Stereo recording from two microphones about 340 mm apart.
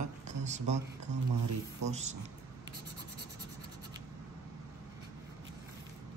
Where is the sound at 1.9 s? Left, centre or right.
Centre.